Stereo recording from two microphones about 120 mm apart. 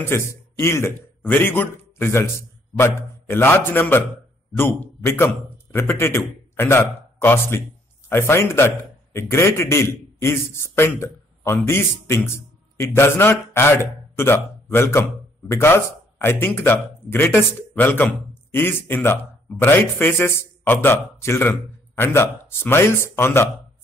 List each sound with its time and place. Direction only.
0.0 s a man's voice: 20° left (ahead or behind)